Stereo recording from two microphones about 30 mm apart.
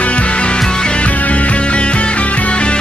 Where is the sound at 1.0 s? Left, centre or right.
Left.